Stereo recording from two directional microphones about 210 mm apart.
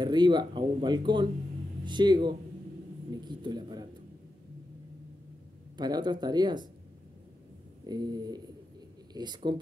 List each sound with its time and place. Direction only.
0.0 s speech: 20° right (ahead or behind)
5.8 s speech: 20° right (ahead or behind)
7.8 s speech: 20° right (ahead or behind)